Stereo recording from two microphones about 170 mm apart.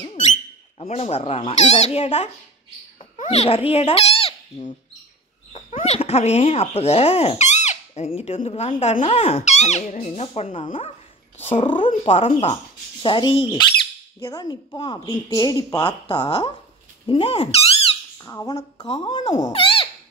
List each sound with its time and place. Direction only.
0.1 s speech: 40° left (ahead or behind)
5.8 s speech: 35° left (ahead or behind)
12.0 s speech: 35° left (ahead or behind)
18.2 s speech: 20° left (ahead or behind)
18.8 s speech: 35° left (ahead or behind)
19.5 s a sound: 30° left (ahead or behind)